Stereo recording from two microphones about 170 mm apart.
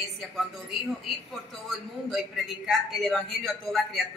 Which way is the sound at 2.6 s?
Centre (ahead or behind).